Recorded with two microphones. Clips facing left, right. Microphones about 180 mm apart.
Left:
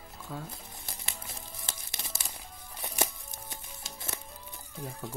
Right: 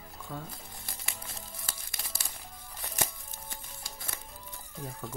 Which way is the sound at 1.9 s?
20° left (ahead or behind).